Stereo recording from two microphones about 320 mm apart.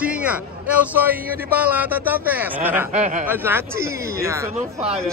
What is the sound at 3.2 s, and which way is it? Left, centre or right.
Speech, centre.